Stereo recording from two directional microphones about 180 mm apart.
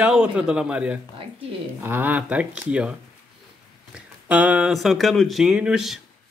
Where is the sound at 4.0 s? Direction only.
5° right (ahead or behind).